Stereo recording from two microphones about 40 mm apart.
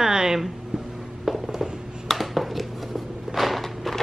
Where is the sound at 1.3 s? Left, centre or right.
Centre.